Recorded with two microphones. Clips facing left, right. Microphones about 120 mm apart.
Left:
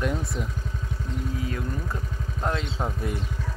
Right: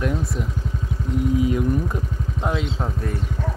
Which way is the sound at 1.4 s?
20° right (ahead or behind).